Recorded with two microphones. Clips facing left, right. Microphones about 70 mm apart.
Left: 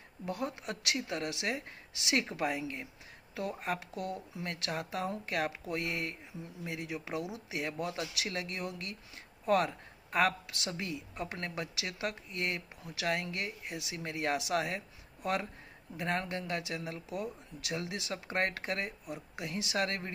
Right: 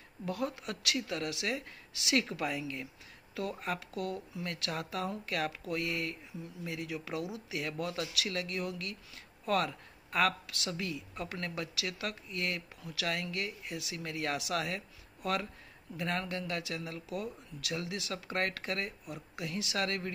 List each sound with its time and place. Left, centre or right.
0.2 s speech: left
16.0 s speech: left